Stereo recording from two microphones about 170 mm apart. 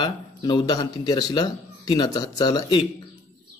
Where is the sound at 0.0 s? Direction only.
25° left (ahead or behind).